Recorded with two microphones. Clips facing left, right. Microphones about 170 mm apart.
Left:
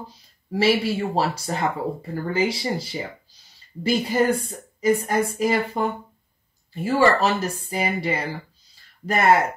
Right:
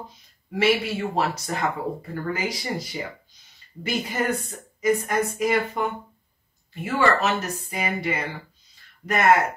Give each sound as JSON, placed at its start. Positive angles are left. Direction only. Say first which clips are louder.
{"t": 0.5, "sound": "speech", "louder": "left 2 dB", "side_deg": 30}